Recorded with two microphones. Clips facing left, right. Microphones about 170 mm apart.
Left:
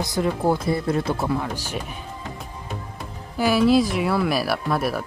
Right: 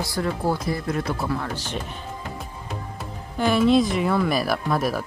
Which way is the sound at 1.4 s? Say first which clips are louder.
Left 1 dB; 10° left (ahead or behind).